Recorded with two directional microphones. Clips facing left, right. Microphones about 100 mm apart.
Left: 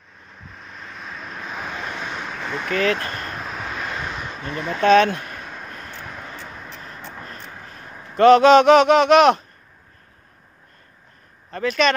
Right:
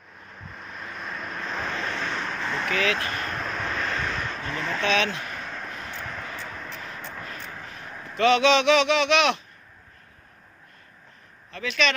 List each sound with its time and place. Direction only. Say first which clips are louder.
0.3 s vehicle: right 1 dB; centre (ahead or behind)
2.7 s speech: left 6 dB; 40° left (ahead or behind)
3.3 s a sound: even; 5° left (ahead or behind)
4.7 s speech: left 11 dB; 45° left (ahead or behind)
5.4 s a sound: even; 10° left (ahead or behind)
5.9 s vehicle: right 1 dB; 10° left (ahead or behind)
7.0 s vehicle: left 1 dB; 10° left (ahead or behind)
8.1 s speech: left 8 dB; 45° left (ahead or behind)
11.5 s speech: left 6 dB; 45° left (ahead or behind)